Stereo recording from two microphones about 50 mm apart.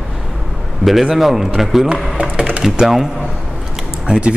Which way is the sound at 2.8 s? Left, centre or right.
Centre.